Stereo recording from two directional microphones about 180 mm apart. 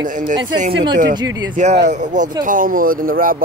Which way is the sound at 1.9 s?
40° right (ahead or behind).